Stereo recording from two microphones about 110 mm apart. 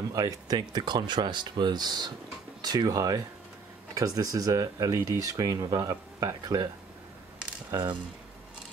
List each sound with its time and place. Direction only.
0.1 s speech: 35° right (ahead or behind)
7.7 s speech: 45° right (ahead or behind)